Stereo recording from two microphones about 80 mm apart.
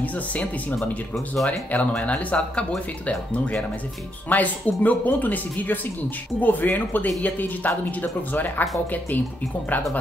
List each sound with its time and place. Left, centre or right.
0.0 s speech: centre
4.3 s speech: left